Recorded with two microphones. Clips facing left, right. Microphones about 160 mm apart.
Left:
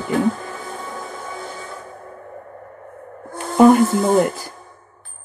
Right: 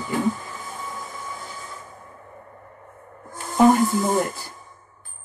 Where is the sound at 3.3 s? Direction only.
60° left (ahead or behind).